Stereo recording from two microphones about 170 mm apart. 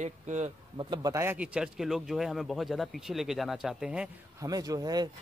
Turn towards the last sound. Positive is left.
turn(degrees=-20)  # may be behind; listen again after turning